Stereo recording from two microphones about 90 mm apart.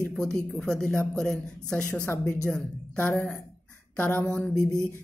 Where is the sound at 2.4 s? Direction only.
15° left (ahead or behind).